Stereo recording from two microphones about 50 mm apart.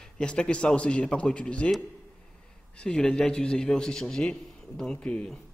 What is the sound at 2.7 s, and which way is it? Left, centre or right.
A man's voice, centre.